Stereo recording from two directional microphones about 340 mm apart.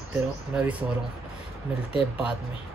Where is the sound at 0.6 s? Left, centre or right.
Centre.